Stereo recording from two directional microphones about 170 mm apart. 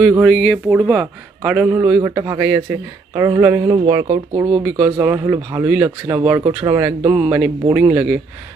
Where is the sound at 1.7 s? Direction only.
15° right (ahead or behind).